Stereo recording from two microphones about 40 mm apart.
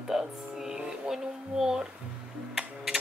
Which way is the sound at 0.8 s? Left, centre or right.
Centre.